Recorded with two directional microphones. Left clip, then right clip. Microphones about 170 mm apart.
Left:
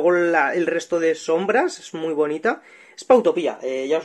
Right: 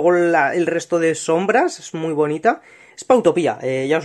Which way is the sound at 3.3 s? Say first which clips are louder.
Right 4 dB; 40° right (ahead or behind).